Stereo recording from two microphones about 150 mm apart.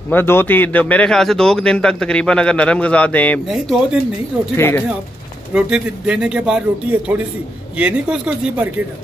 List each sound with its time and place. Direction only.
0.1 s a man's voice: 15° left (ahead or behind)
3.4 s speech: centre (ahead or behind)
4.6 s a man's voice: 15° left (ahead or behind)
5.5 s a man's voice: 5° right (ahead or behind)